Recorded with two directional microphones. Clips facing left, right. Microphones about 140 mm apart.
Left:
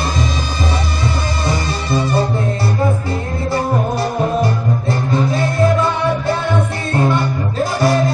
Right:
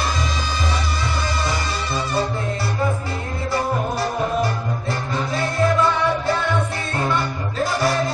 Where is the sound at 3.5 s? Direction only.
25° left (ahead or behind).